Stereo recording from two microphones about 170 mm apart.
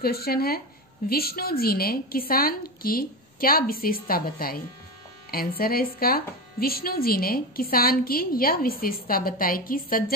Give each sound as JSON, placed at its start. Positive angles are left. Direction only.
{"t": 0.0, "sound": "speech", "side_deg": 65}